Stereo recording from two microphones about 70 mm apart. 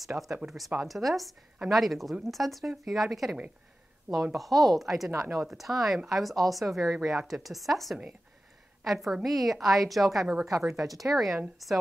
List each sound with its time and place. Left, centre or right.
0.0 s a woman's voice: centre
4.4 s a woman's voice: centre
10.2 s a woman's voice: centre
11.1 s a woman's voice: centre